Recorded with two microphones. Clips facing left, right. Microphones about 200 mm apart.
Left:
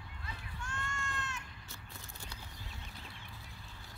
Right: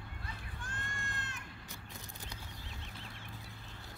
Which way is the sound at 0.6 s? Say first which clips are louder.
Left 4 dB; 55° right (ahead or behind).